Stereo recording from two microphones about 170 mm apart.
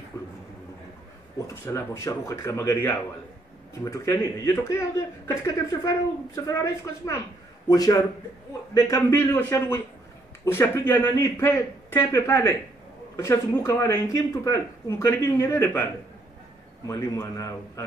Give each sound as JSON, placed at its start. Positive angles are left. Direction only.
{"t": 0.2, "sound": "a sound", "side_deg": 20}
{"t": 1.5, "sound": "a woman's voice", "side_deg": 15}
{"t": 16.8, "sound": "a woman's voice", "side_deg": 20}